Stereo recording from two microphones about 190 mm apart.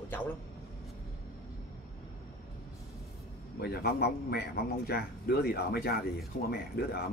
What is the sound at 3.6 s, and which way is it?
A man's voice, 55° left (ahead or behind).